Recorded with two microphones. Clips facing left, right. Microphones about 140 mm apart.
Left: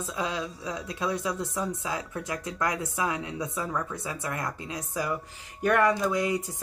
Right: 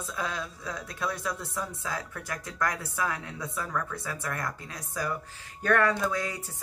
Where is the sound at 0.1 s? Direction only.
20° left (ahead or behind).